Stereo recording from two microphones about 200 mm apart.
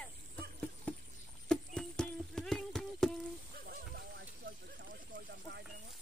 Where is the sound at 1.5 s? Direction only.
5° left (ahead or behind).